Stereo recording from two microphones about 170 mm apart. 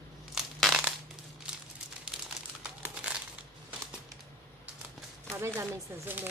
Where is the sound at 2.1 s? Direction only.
5° right (ahead or behind).